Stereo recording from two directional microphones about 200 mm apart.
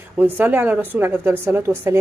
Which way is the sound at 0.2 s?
10° right (ahead or behind).